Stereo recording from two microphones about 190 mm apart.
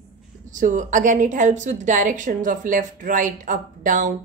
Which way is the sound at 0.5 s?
40° right (ahead or behind).